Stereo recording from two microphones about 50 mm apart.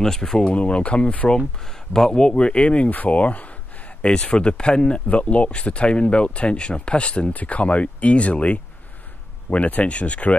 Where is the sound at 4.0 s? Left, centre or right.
Centre.